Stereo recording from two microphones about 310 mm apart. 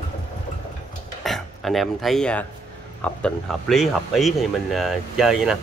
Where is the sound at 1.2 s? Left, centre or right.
Centre.